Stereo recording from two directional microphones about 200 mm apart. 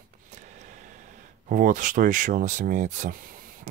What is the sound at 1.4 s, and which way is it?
Speech, 40° right (ahead or behind).